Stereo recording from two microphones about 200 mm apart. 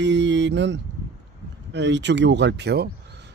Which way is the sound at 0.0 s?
65° right (ahead or behind).